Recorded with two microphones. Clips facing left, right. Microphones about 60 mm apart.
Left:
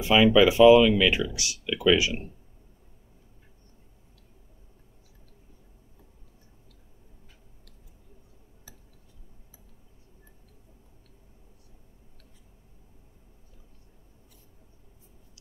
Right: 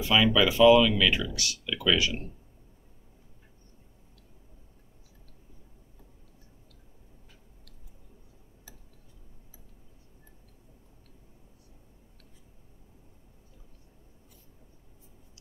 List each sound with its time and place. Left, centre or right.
0.0 s speech: centre